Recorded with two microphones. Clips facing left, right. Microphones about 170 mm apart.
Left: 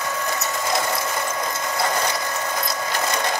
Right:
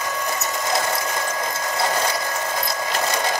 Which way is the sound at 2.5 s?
5° right (ahead or behind).